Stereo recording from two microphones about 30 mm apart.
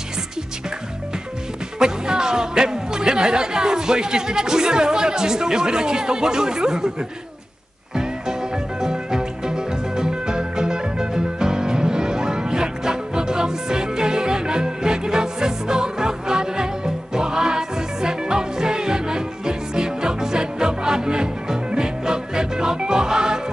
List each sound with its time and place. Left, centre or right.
1.8 s speech: right
7.9 s music: right